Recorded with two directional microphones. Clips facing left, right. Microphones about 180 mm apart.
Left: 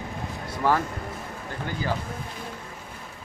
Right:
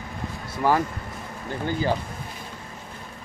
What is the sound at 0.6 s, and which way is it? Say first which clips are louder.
Speech: right 2 dB; 10° right (ahead or behind).